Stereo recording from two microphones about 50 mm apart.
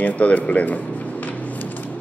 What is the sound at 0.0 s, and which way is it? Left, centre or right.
Speech, left.